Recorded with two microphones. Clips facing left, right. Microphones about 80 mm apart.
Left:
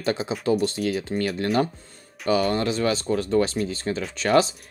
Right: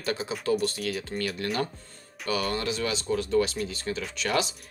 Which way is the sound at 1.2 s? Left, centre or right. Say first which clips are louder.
Left 7 dB; left.